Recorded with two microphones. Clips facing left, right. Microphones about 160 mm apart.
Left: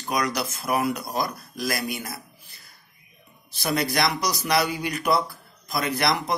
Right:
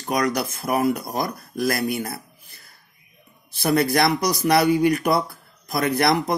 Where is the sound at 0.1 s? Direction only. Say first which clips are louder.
Right 4 dB; 50° right (ahead or behind).